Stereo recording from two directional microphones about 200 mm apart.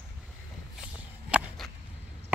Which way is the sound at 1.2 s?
Centre (ahead or behind).